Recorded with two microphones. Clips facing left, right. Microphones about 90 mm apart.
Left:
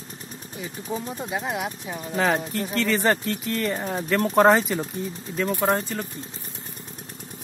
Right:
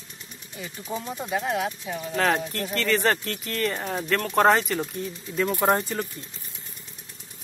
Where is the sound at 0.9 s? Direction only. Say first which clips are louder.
Left 2 dB; 5° left (ahead or behind).